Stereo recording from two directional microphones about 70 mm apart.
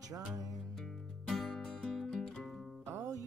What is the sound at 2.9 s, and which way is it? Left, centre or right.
Music, right.